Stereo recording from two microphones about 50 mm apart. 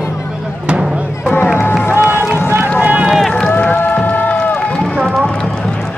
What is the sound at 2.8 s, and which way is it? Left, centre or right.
Run, right.